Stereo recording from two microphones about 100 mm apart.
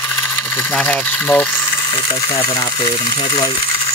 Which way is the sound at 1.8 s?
50° left (ahead or behind).